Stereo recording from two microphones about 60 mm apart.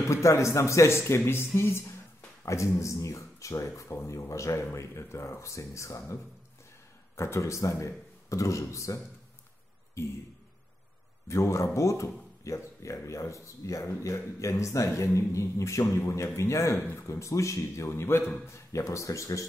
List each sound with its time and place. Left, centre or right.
0.1 s speech: left
2.4 s speech: left
4.7 s speech: left
7.2 s a man's voice: left
11.2 s speech: left
18.7 s speech: left